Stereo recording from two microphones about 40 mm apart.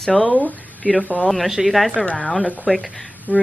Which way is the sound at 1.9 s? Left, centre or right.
Left.